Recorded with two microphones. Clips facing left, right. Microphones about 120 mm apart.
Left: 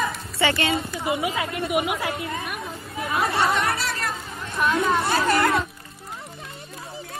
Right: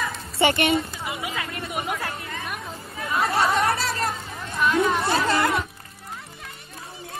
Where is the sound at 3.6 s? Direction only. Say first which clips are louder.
Right 2 dB; 30° right (ahead or behind).